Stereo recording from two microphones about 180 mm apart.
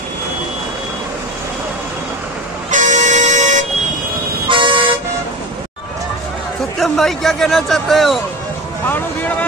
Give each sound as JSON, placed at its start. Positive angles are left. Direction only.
{"t": 2.7, "sound": "vehicle", "side_deg": -40}
{"t": 4.5, "sound": "toot", "side_deg": -30}
{"t": 6.8, "sound": "a man's voice", "side_deg": 0}
{"t": 8.8, "sound": "speech", "side_deg": 10}